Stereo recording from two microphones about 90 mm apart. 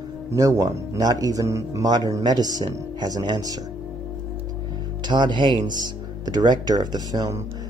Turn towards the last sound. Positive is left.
turn(degrees=-45)  # may be behind; listen again after turning